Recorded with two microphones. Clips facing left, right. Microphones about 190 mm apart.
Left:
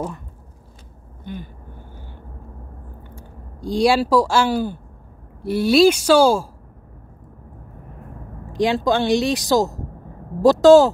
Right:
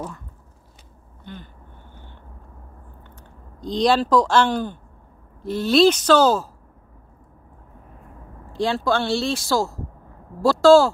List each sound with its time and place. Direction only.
1.2 s vehicle: 10° left (ahead or behind)
3.2 s speech: 10° left (ahead or behind)
8.5 s speech: 15° left (ahead or behind)